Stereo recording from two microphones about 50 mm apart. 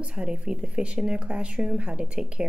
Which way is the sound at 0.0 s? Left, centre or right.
Right.